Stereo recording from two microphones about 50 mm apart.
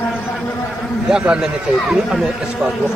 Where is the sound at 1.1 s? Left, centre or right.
Centre.